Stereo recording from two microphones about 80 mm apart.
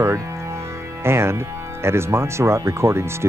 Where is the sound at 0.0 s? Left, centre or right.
Right.